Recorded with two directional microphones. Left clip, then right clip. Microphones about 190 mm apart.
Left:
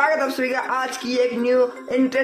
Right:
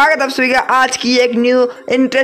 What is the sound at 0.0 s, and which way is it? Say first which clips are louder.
Speech: right 8 dB; 50° right (ahead or behind).